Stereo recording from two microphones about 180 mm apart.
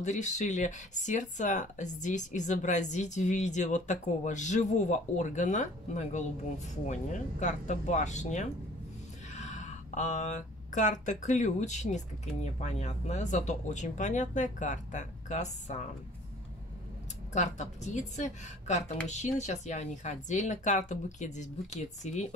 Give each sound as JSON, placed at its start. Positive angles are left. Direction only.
{"t": 0.0, "sound": "speech", "side_deg": 40}
{"t": 17.3, "sound": "speech", "side_deg": 40}